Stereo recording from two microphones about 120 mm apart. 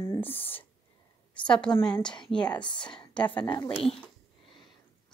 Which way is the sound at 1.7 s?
5° left (ahead or behind).